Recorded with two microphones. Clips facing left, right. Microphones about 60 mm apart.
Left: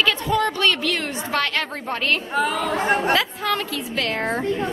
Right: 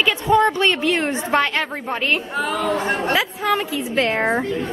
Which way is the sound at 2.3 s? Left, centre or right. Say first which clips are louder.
Even; centre.